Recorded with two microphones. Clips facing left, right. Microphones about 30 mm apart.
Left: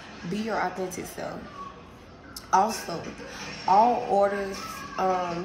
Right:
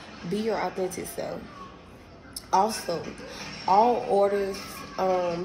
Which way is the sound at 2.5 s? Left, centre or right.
Right.